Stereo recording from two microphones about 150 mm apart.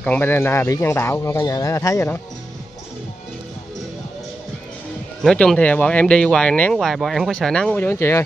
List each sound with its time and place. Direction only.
0.0 s speech: 10° left (ahead or behind)
5.2 s speech: 5° left (ahead or behind)